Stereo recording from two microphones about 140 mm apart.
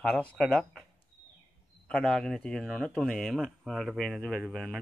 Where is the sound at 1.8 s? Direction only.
10° left (ahead or behind).